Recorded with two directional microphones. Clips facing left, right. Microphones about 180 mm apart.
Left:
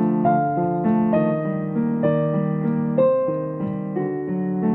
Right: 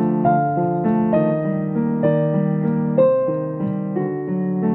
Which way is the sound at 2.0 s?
45° right (ahead or behind).